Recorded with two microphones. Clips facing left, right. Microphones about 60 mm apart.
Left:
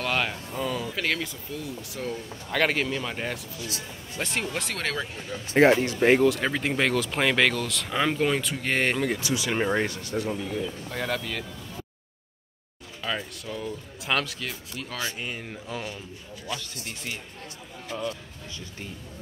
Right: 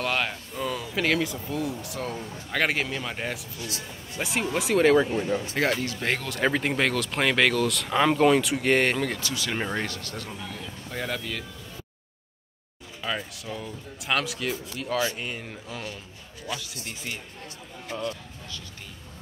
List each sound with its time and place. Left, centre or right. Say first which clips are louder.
0.0 s speech: even; centre
5.1 s speech: right 10 dB; right
5.5 s speech: left 7 dB; left
6.2 s speech: left 2 dB; centre
10.9 s speech: right 3 dB; centre
13.0 s speech: even; centre